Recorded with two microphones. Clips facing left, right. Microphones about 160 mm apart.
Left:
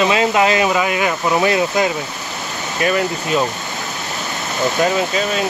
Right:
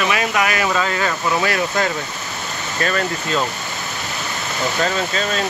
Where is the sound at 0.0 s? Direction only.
25° left (ahead or behind).